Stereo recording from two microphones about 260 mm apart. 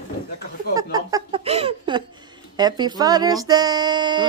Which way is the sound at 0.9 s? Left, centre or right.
Centre.